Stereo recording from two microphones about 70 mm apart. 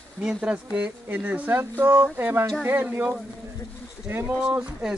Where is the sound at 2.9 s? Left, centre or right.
Right.